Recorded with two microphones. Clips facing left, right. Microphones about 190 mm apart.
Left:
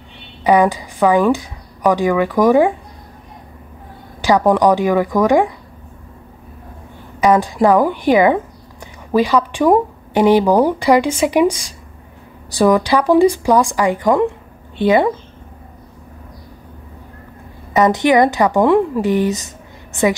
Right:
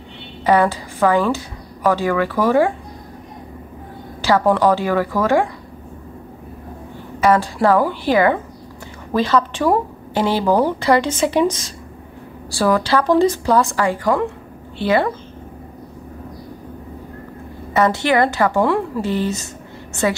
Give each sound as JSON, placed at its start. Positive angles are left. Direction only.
{"t": 0.4, "sound": "speech", "side_deg": 15}
{"t": 4.2, "sound": "speech", "side_deg": 15}
{"t": 7.2, "sound": "speech", "side_deg": 15}
{"t": 17.7, "sound": "speech", "side_deg": 15}